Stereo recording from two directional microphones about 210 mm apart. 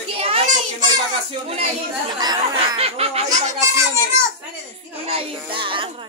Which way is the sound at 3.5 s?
15° right (ahead or behind).